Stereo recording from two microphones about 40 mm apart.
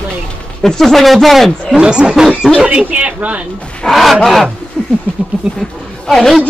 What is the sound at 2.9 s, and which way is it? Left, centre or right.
Speech, right.